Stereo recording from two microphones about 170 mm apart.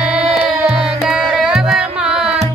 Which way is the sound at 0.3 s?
5° right (ahead or behind).